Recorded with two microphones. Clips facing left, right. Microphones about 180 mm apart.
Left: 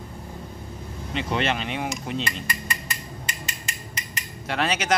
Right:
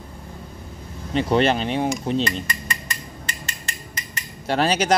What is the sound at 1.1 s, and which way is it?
Speech, 35° right (ahead or behind).